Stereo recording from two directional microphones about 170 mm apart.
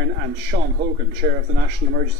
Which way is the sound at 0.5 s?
50° right (ahead or behind).